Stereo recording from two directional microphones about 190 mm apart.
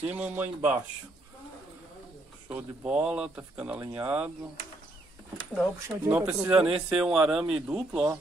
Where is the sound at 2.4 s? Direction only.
10° right (ahead or behind).